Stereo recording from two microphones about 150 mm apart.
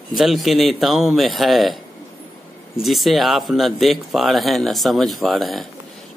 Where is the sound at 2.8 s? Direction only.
Centre (ahead or behind).